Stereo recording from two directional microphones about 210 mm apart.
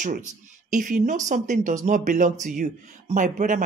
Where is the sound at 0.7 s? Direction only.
35° right (ahead or behind).